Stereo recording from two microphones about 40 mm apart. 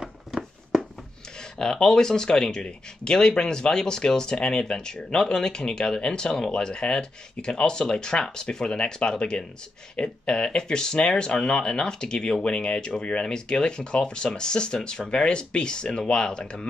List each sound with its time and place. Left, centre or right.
1.6 s speech: centre